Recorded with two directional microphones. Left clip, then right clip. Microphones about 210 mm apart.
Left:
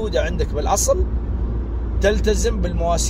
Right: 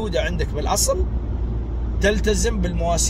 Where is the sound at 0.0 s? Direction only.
20° right (ahead or behind).